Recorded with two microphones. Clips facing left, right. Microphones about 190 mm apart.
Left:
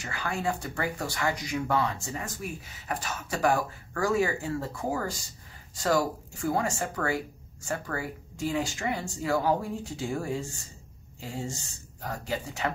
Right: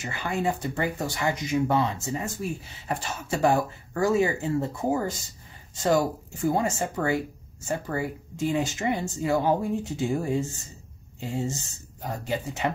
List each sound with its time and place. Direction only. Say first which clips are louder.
0.0 s speech: right 4 dB; 20° right (ahead or behind)